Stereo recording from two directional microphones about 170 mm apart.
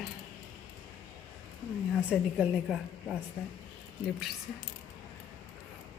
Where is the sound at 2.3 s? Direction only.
Centre (ahead or behind).